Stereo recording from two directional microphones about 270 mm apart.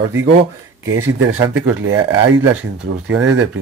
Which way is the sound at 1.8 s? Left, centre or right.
Right.